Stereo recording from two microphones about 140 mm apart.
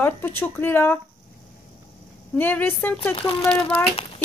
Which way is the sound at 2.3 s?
15° left (ahead or behind).